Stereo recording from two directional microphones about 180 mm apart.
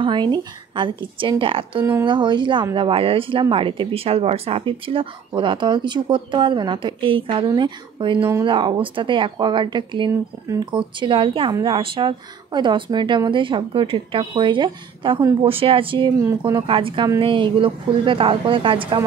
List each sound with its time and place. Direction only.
0.0 s speech: 25° right (ahead or behind)